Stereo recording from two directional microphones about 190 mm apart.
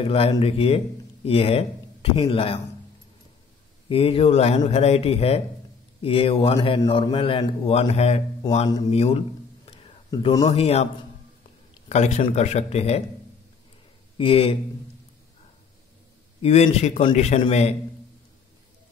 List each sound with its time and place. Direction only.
0.0 s speech: 30° left (ahead or behind)
3.9 s speech: 30° left (ahead or behind)
11.9 s speech: 35° left (ahead or behind)
14.1 s speech: 30° left (ahead or behind)
16.3 s speech: 35° left (ahead or behind)